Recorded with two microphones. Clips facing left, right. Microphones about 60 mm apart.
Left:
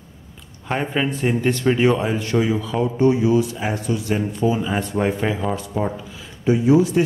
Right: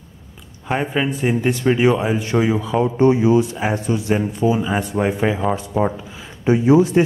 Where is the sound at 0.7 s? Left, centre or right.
Centre.